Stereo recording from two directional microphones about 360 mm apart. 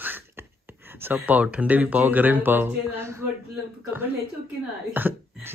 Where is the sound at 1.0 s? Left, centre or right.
Centre.